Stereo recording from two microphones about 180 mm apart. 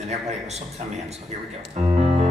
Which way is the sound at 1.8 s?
35° right (ahead or behind).